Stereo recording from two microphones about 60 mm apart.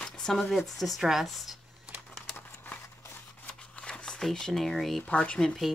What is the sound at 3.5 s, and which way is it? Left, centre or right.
Scissors, centre.